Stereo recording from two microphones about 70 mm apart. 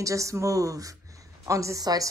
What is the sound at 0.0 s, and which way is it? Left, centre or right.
A woman's voice, right.